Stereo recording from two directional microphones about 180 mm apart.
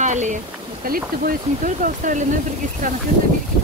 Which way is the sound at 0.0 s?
40° right (ahead or behind).